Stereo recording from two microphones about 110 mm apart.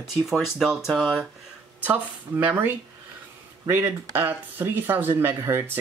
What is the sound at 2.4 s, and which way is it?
Speech, 15° right (ahead or behind).